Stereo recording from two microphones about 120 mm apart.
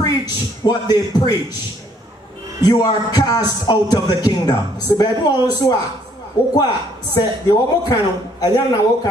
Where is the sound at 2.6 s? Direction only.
35° left (ahead or behind).